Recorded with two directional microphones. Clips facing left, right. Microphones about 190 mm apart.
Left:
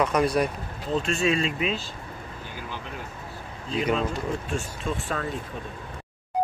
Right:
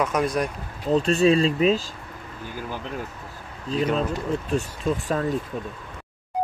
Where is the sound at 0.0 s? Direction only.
Centre (ahead or behind).